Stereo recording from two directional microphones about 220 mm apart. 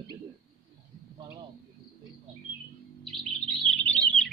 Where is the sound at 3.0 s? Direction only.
Centre (ahead or behind).